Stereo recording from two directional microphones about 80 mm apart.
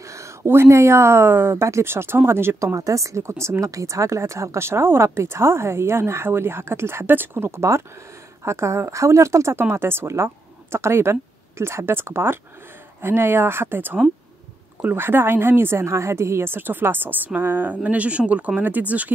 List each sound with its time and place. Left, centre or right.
0.0 s speech: right
2.7 s speech: right; by 19.1 s centre